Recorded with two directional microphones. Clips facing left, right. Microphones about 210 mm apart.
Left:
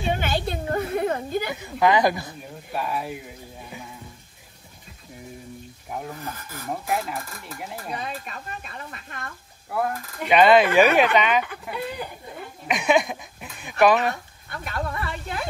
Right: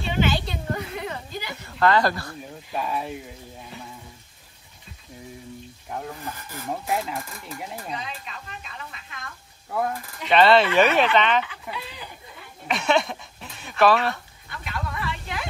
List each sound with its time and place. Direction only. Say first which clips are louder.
0.0 s a sound: right 1 dB; 50° left (ahead or behind)
1.6 s speech: even; 15° left (ahead or behind)
2.7 s speech: even; centre (ahead or behind)
5.9 s speech: even; 5° left (ahead or behind)
7.9 s snake: left 2 dB; 50° left (ahead or behind)
9.7 s speech: even; centre (ahead or behind)
11.4 s speech: left 5 dB; 50° left (ahead or behind)
12.6 s speech: left 2 dB; 15° left (ahead or behind)
14.5 s speech: left 3 dB; 50° left (ahead or behind)